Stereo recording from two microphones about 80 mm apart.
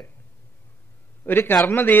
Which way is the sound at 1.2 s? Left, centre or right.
Left.